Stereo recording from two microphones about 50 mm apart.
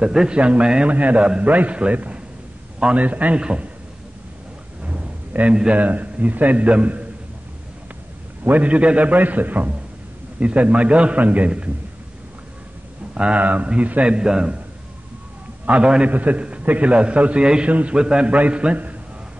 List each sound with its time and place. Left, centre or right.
0.0 s a man's voice: centre
0.3 s a man's voice: right
0.8 s a man's voice: right
3.3 s a man's voice: right
4.8 s a sound: right
5.8 s a man's voice: right
8.5 s a man's voice: right
13.1 s speech: centre
13.4 s a man's voice: right
14.1 s a man's voice: centre
15.6 s a man's voice: right
17.9 s a man's voice: centre